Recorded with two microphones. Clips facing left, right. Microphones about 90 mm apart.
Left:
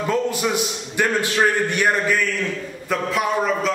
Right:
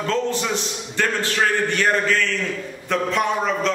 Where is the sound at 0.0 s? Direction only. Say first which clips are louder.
Left 1 dB; 10° left (ahead or behind).